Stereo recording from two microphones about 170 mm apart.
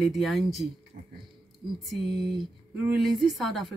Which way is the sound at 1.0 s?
60° right (ahead or behind).